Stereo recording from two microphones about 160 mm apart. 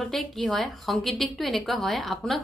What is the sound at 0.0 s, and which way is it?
A woman's voice, centre (ahead or behind).